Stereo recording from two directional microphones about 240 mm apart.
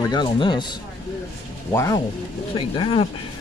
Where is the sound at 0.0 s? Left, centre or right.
Centre.